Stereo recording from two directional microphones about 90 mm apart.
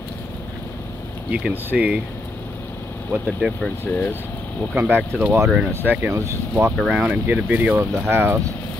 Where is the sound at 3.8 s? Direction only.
25° left (ahead or behind).